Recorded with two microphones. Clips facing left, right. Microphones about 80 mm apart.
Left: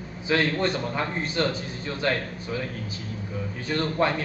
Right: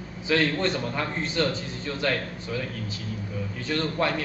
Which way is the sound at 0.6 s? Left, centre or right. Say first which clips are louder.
Left 1 dB; centre.